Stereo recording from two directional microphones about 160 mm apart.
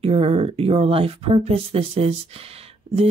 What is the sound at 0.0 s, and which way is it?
Speech, 40° right (ahead or behind).